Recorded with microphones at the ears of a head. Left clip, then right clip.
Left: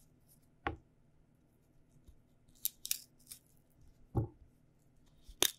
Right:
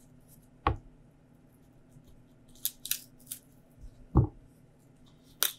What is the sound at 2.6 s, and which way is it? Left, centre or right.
Scissors, right.